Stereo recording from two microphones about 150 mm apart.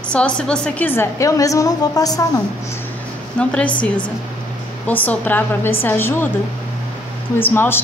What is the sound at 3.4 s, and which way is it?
A woman's voice, 10° left (ahead or behind).